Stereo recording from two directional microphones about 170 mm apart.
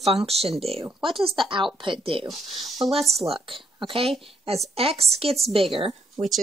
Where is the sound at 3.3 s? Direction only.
30° right (ahead or behind).